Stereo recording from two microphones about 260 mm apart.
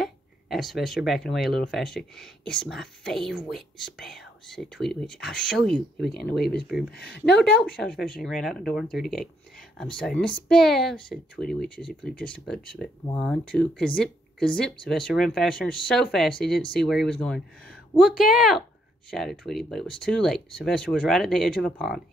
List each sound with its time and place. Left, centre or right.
0.0 s speech: centre
5.9 s speech: left
6.5 s speech: centre
6.9 s speech: left
7.8 s speech: centre